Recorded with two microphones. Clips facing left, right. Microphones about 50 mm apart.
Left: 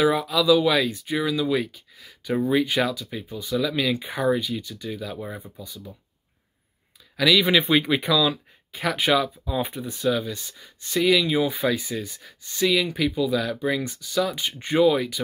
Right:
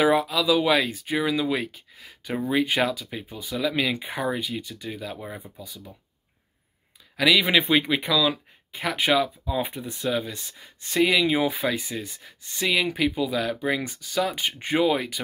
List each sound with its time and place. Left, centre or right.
0.0 s speech: centre
2.3 s speech: centre
2.6 s speech: right
7.2 s speech: centre
8.3 s a sound: centre
8.9 s speech: centre